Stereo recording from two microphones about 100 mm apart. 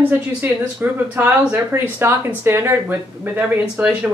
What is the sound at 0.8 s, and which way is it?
Speech, 20° right (ahead or behind).